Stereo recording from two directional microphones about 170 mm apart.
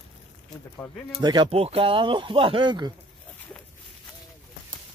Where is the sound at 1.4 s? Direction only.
35° right (ahead or behind).